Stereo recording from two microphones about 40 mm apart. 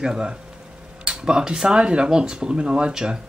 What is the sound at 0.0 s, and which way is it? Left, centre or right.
Speech, centre.